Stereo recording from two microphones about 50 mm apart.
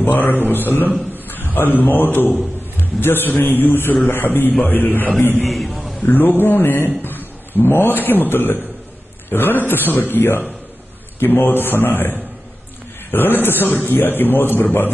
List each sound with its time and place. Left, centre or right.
0.0 s a man's voice: left
5.5 s a man's voice: centre
6.0 s a man's voice: left
7.0 s a sound: left
8.1 s a man's voice: left